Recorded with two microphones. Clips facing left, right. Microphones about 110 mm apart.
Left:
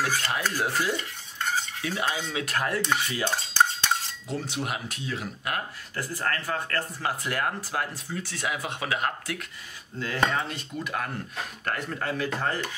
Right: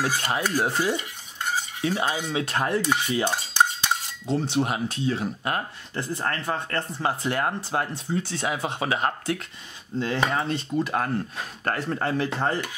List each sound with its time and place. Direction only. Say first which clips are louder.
0.0 s speech: right 2 dB; 20° right (ahead or behind)
1.7 s stir: right 4 dB; 25° right (ahead or behind)
2.3 s speech: right 4 dB; 25° right (ahead or behind)
3.2 s cutlery: even; 20° right (ahead or behind)
4.6 s speech: right 7 dB; 30° right (ahead or behind)